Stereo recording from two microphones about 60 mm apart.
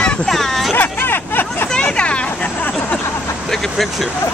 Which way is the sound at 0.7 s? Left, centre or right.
Left.